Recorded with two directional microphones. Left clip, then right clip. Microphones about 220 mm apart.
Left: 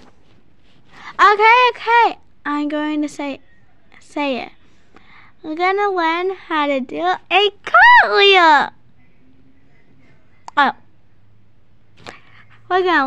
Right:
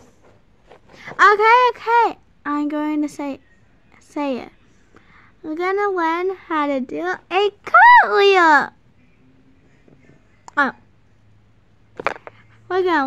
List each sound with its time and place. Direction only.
1.1 s a child's voice: 15° right (ahead or behind)
10.4 s music: 10° right (ahead or behind)
12.4 s a sound: 20° right (ahead or behind)